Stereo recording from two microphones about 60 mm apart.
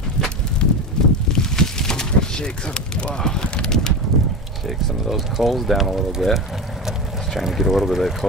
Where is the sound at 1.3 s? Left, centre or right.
Centre.